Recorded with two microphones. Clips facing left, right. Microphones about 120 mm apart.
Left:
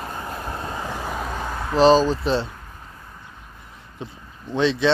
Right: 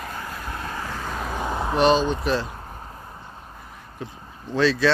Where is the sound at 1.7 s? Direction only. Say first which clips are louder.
Left 4 dB; 30° left (ahead or behind).